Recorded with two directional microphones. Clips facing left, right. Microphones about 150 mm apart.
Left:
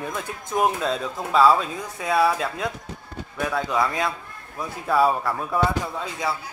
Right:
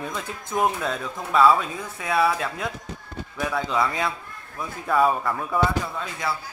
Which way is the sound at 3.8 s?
Centre (ahead or behind).